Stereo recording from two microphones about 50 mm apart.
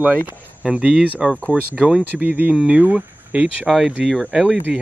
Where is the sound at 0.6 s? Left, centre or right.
Right.